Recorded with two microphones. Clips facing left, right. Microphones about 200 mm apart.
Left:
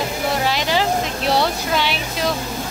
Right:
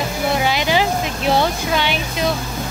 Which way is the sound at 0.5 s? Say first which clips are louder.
Right 1 dB; 5° right (ahead or behind).